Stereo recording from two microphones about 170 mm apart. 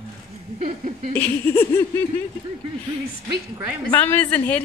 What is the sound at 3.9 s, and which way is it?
Speech, 10° left (ahead or behind).